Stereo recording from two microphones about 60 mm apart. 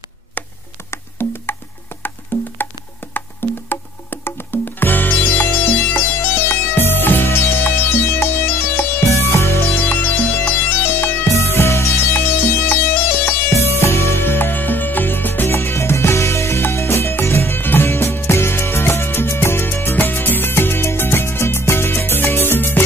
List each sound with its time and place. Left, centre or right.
1.2 s music: left
9.8 s music: left
11.2 s music: left
12.1 s music: left
15.5 s music: left